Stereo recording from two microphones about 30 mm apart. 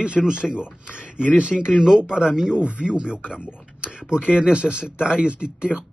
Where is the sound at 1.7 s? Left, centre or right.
Right.